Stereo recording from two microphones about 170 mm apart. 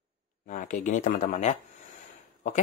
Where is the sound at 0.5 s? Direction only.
50° left (ahead or behind).